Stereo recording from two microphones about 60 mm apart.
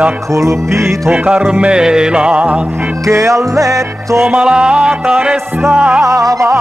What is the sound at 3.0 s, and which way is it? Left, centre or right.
Music, right.